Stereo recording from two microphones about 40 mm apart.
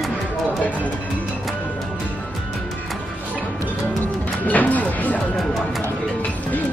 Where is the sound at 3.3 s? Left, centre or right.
Left.